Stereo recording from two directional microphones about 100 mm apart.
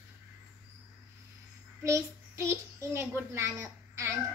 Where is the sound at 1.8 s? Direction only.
30° right (ahead or behind).